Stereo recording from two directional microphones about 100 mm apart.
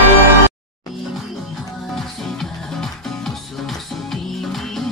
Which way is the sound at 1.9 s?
5° left (ahead or behind).